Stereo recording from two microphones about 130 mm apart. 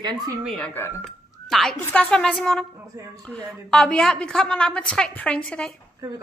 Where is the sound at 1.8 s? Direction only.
10° left (ahead or behind).